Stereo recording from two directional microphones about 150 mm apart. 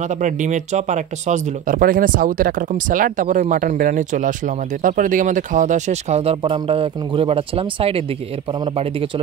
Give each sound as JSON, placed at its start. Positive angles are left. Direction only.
{"t": 0.1, "sound": "speech", "side_deg": -55}